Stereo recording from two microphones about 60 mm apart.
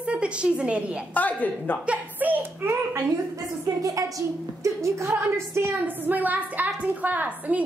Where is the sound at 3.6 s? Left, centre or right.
Right.